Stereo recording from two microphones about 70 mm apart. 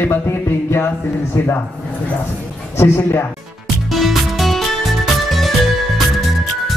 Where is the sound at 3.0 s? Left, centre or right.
Left.